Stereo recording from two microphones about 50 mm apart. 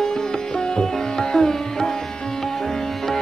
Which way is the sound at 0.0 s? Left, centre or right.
Centre.